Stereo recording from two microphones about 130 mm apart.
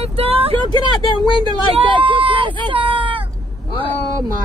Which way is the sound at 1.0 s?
40° left (ahead or behind).